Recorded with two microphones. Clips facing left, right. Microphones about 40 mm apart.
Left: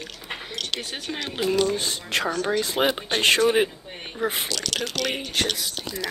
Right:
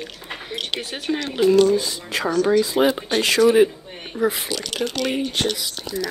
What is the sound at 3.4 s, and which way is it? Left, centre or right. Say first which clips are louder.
Speech: right 6 dB; left.